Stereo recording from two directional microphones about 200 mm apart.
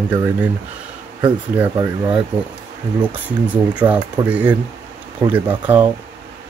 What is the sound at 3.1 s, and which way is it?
Speech, 10° right (ahead or behind).